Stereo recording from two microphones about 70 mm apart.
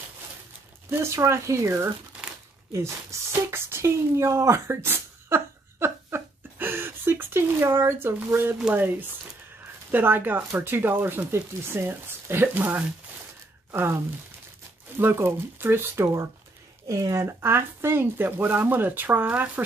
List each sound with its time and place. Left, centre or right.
0.8 s a woman's voice: right
9.8 s speech: right
15.0 s speech: right
16.8 s speech: right